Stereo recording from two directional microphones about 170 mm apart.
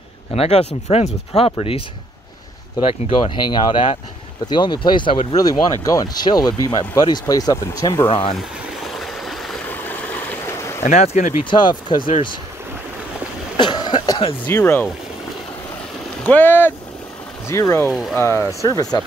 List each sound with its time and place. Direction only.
0.3 s speech: 35° left (ahead or behind)
2.9 s speech: 30° left (ahead or behind)
8.4 s stream: centre (ahead or behind)
10.8 s speech: 40° left (ahead or behind)
11.5 s speech: 25° left (ahead or behind)
13.6 s cough: 25° left (ahead or behind)
14.4 s speech: 10° left (ahead or behind)
16.3 s speech: 10° left (ahead or behind)